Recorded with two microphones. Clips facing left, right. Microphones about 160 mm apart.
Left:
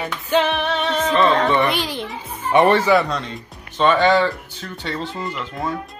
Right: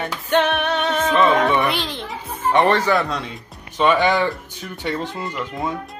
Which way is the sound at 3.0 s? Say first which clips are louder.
Left 1 dB; 5° right (ahead or behind).